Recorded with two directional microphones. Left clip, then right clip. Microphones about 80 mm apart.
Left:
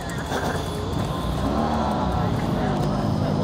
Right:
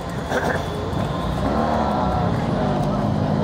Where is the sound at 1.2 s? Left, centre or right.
Right.